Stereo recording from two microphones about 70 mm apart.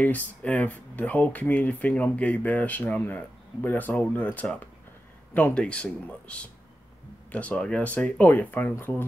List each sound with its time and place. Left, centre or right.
0.0 s speech: left